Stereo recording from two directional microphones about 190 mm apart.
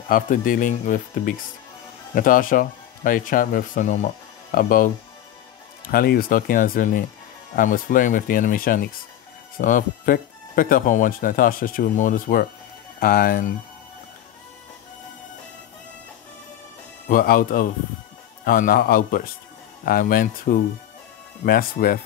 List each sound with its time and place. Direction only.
0.1 s speech: 45° left (ahead or behind)
5.9 s speech: 50° left (ahead or behind)
17.1 s speech: 50° left (ahead or behind)